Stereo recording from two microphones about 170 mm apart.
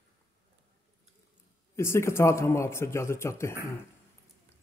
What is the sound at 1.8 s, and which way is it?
A man's voice, 15° left (ahead or behind).